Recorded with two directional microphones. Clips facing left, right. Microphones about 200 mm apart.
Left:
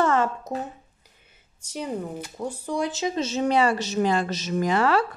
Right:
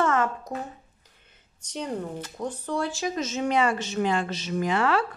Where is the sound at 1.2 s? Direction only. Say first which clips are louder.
Even; 10° left (ahead or behind); by 5.0 s 40° left (ahead or behind).